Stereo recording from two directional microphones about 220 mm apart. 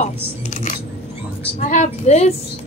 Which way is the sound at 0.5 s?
35° left (ahead or behind).